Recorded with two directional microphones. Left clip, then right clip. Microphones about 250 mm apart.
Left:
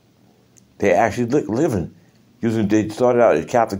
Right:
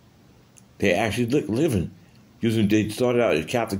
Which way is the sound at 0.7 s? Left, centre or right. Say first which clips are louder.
Left 6 dB; centre.